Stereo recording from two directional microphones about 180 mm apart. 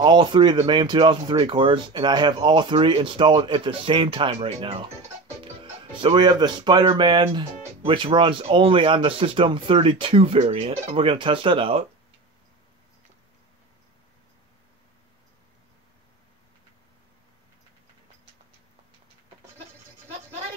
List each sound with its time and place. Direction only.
0.0 s speech: 25° right (ahead or behind)